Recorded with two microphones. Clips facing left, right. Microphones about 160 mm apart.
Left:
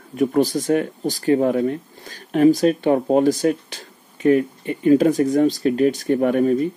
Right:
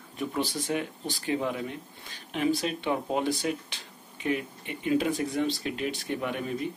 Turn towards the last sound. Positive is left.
turn(degrees=45)  # may be behind; listen again after turning